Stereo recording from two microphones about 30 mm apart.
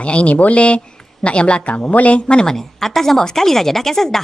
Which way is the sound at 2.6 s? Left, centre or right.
Centre.